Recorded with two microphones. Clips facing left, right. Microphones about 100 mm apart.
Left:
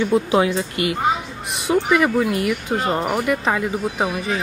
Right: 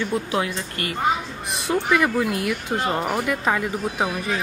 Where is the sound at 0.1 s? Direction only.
20° left (ahead or behind).